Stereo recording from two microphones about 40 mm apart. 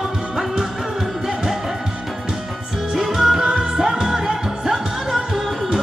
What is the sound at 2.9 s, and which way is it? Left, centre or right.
Music, centre.